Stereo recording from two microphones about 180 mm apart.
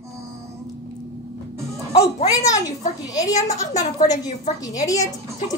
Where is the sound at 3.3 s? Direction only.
40° left (ahead or behind).